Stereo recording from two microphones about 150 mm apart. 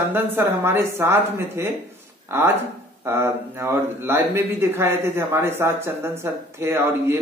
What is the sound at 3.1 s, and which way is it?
Speech, 15° right (ahead or behind).